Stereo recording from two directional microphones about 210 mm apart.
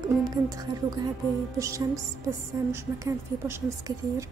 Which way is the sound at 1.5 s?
15° right (ahead or behind).